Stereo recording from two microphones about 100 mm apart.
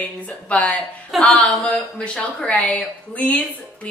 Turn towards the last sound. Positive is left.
turn(degrees=15)  # may be behind; listen again after turning